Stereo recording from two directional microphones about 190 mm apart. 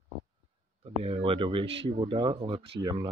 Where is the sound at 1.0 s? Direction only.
30° right (ahead or behind).